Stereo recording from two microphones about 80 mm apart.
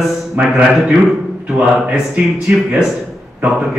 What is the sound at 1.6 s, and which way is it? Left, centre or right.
Speech, centre.